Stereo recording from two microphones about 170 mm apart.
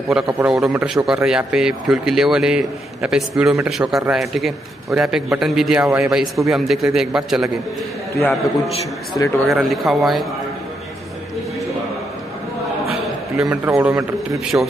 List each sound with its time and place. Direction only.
0.4 s speech: 5° right (ahead or behind)
9.1 s a man's voice: 25° left (ahead or behind)
9.5 s speech: centre (ahead or behind)
13.7 s a man's voice: 10° right (ahead or behind)